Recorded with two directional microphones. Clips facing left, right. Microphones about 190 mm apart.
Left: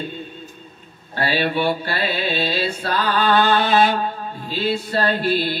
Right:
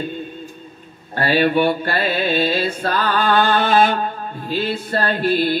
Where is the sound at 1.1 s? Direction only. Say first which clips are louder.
Right 5 dB; 50° right (ahead or behind).